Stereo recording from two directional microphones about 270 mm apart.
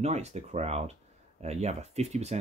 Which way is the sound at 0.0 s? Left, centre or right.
Right.